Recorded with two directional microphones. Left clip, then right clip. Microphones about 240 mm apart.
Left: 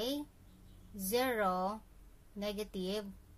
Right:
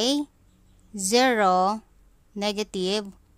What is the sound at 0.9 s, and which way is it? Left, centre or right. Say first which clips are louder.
A woman's voice: right 13 dB; right.